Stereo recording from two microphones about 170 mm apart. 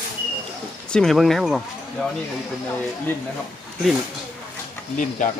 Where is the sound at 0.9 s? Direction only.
Centre (ahead or behind).